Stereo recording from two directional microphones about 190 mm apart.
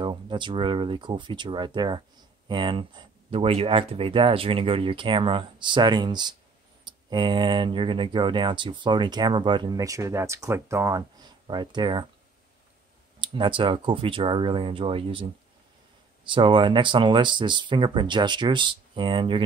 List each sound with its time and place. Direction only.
0.0 s speech: 25° right (ahead or behind)
13.2 s speech: 25° right (ahead or behind)
16.3 s speech: 25° right (ahead or behind)